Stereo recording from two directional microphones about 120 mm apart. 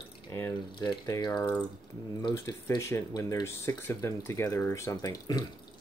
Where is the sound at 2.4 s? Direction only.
25° left (ahead or behind).